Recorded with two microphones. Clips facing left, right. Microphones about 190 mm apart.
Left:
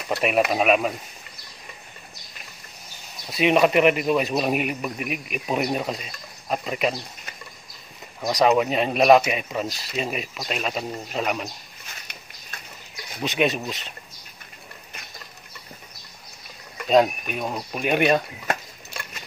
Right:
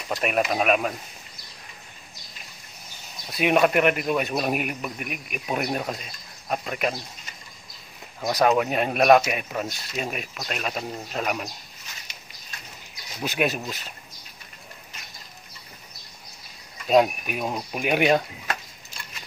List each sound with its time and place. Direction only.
0.5 s speech: centre (ahead or behind)
3.3 s speech: centre (ahead or behind)
8.2 s speech: centre (ahead or behind)
13.2 s speech: 5° right (ahead or behind)
16.8 s speech: 5° right (ahead or behind)
18.5 s a sound: 65° left (ahead or behind)